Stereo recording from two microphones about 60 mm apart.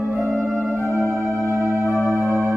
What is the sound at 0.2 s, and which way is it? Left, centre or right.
Music, centre.